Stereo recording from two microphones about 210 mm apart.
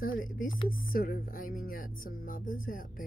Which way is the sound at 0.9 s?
45° left (ahead or behind).